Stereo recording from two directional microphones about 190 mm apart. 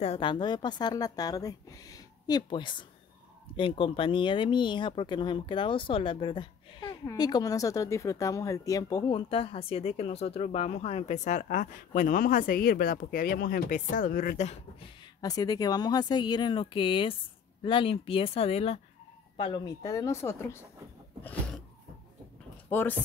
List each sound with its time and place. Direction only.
0.0 s speech: 30° left (ahead or behind)
15.2 s speech: 20° left (ahead or behind)
22.7 s speech: 10° left (ahead or behind)